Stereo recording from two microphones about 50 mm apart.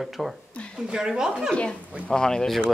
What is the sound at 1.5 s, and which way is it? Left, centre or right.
Speech, left.